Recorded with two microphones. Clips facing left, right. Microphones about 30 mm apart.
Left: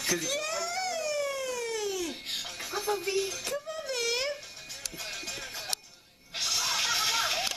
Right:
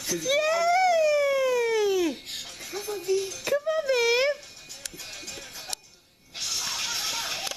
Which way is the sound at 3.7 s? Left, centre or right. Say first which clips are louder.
Right 10 dB; right.